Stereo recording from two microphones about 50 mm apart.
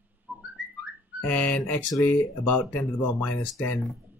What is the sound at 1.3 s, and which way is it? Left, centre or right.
Speech, left.